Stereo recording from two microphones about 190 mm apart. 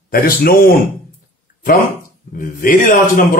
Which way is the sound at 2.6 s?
45° left (ahead or behind).